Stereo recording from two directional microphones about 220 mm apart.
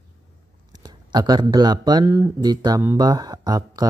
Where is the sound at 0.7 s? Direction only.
20° right (ahead or behind).